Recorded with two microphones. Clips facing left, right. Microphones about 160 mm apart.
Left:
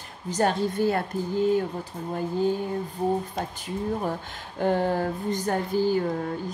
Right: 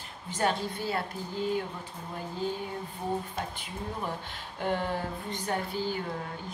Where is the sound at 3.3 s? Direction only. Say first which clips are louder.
Left 6 dB; 40° left (ahead or behind).